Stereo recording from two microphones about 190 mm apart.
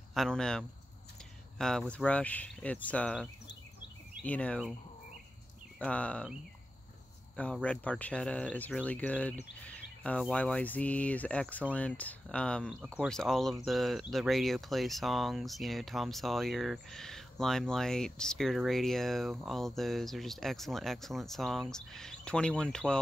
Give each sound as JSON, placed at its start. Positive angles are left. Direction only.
{"t": 0.1, "sound": "speech", "side_deg": 0}
{"t": 5.8, "sound": "speech", "side_deg": 5}
{"t": 7.3, "sound": "speech", "side_deg": 5}